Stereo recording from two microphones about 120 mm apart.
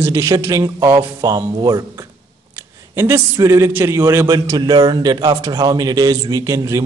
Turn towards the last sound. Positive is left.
turn(degrees=-25)  # may be behind; listen again after turning